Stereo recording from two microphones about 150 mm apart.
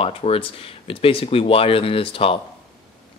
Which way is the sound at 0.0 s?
40° left (ahead or behind).